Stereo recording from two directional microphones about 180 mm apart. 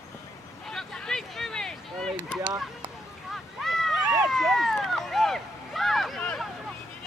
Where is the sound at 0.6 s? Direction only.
5° left (ahead or behind).